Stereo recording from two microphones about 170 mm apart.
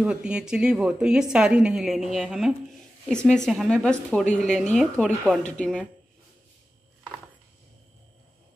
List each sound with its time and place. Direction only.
0.0 s speech: 5° right (ahead or behind)